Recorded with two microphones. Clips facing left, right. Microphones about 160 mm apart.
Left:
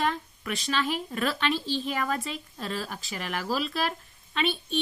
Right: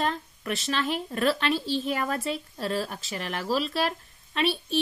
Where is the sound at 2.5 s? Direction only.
35° right (ahead or behind).